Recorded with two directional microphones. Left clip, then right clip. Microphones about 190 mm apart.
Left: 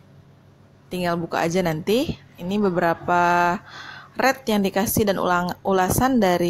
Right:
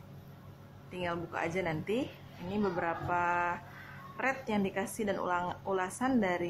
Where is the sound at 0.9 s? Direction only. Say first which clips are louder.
Left 12 dB; 45° left (ahead or behind).